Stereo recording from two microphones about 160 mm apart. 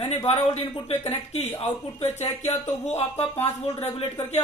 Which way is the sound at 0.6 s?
30° left (ahead or behind).